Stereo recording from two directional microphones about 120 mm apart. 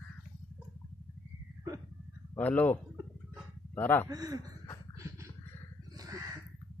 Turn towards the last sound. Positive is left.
turn(degrees=-30)  # may be behind; listen again after turning